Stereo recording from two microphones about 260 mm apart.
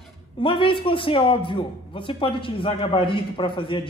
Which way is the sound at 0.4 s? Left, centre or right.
Centre.